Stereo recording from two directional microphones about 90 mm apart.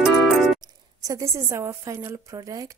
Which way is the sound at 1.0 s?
35° right (ahead or behind).